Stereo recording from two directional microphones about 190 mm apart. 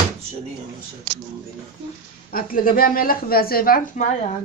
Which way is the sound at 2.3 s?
50° left (ahead or behind).